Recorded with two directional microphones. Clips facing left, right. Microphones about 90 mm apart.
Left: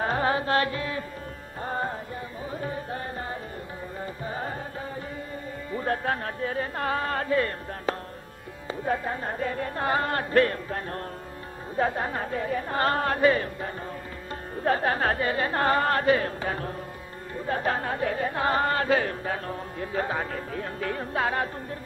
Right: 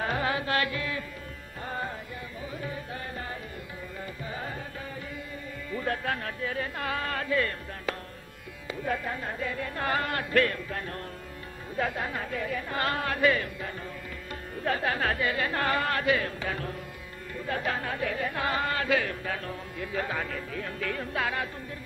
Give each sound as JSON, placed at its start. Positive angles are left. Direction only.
{"t": 0.0, "sound": "music", "side_deg": 35}
{"t": 5.7, "sound": "speech", "side_deg": 35}
{"t": 8.8, "sound": "music", "side_deg": 30}